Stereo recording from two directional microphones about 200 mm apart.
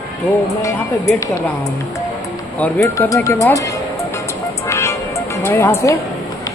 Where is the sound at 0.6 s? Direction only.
15° left (ahead or behind).